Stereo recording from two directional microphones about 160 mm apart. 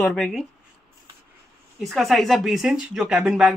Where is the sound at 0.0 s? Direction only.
Centre (ahead or behind).